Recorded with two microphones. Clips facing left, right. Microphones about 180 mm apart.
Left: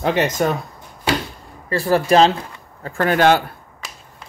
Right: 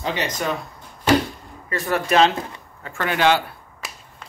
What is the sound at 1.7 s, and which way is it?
Speech, 30° left (ahead or behind).